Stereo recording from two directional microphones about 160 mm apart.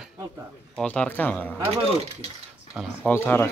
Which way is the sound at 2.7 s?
5° right (ahead or behind).